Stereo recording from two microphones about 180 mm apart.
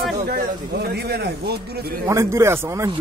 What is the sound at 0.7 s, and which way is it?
A man's voice, 65° right (ahead or behind).